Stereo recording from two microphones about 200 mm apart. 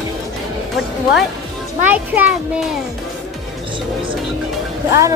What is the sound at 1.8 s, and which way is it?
Speech, 10° right (ahead or behind).